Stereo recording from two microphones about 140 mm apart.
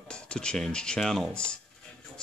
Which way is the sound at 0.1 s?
5° left (ahead or behind).